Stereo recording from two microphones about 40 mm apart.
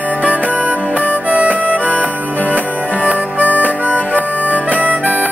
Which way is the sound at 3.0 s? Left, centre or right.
Right.